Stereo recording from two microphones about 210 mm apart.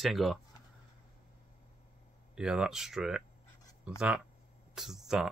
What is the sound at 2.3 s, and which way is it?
Speech, 5° right (ahead or behind).